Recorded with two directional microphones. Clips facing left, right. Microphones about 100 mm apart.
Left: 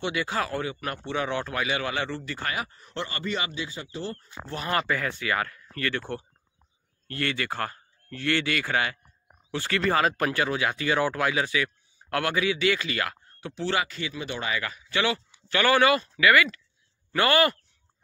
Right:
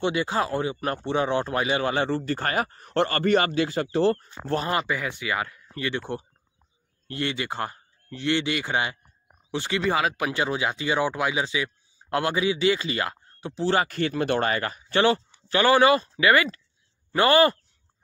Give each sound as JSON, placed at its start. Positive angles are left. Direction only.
{"t": 0.0, "sound": "speech", "side_deg": -25}
{"t": 4.7, "sound": "speech", "side_deg": -15}
{"t": 10.3, "sound": "speech", "side_deg": -20}
{"t": 13.7, "sound": "speech", "side_deg": -50}
{"t": 14.6, "sound": "speech", "side_deg": -35}